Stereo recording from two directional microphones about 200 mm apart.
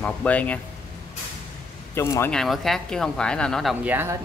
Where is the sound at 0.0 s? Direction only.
5° left (ahead or behind).